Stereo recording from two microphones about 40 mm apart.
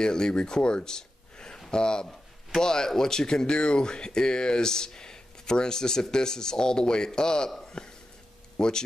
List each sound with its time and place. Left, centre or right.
0.0 s speech: centre
7.6 s a sound: left
8.5 s speech: centre